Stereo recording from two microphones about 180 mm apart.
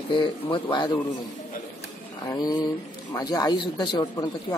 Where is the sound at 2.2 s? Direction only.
20° left (ahead or behind).